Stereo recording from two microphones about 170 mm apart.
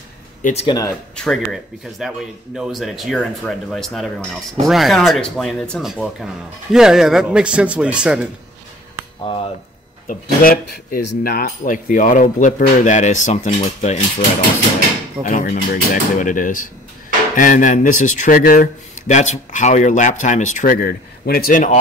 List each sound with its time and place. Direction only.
0.4 s speech: 45° left (ahead or behind)
0.7 s speech: 20° left (ahead or behind)
1.1 s speech: 5° left (ahead or behind)
9.2 s speech: 30° left (ahead or behind)
10.0 s speech: 60° left (ahead or behind); by 13.9 s 45° left (ahead or behind)
15.2 s speech: 50° left (ahead or behind)